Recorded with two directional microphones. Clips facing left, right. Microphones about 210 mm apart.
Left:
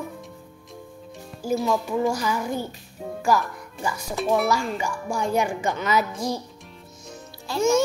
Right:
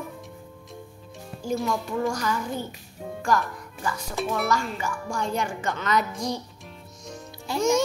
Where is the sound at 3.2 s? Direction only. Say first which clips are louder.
Left 2 dB; 10° left (ahead or behind).